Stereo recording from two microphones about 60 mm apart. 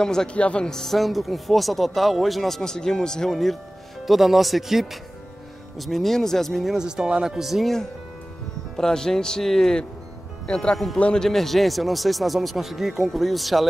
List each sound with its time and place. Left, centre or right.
0.0 s speech: centre
0.4 s speech: left
0.7 s speech: centre
6.7 s speech: centre
11.1 s speech: centre